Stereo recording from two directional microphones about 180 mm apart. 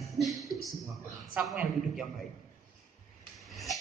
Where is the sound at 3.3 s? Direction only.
Centre (ahead or behind).